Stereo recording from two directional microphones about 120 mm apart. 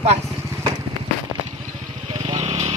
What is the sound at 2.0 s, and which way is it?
Vehicle, 50° right (ahead or behind).